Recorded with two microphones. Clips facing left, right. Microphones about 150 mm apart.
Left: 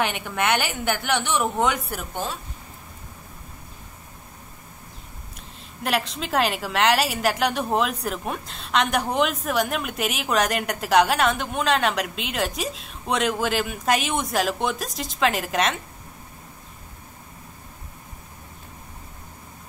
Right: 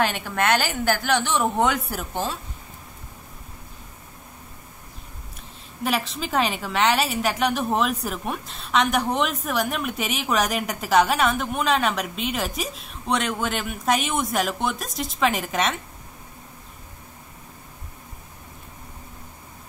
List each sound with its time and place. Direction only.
0.1 s a woman's voice: centre (ahead or behind)
5.9 s a woman's voice: centre (ahead or behind)